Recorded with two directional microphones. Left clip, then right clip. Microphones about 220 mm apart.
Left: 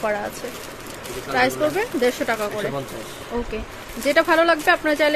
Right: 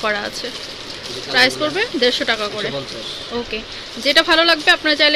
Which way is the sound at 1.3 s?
5° left (ahead or behind).